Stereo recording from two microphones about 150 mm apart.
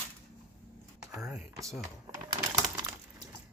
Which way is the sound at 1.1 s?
Centre (ahead or behind).